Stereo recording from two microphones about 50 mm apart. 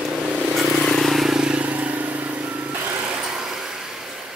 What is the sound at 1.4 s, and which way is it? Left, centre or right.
Vehicle, right.